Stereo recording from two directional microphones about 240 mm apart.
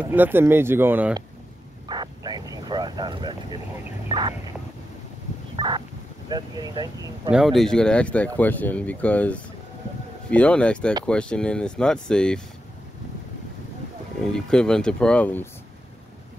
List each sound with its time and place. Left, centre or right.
0.1 s speech: centre
1.9 s vehicle: centre
4.1 s a sound: centre
5.6 s vehicle: centre
7.2 s speech: centre
14.3 s speech: centre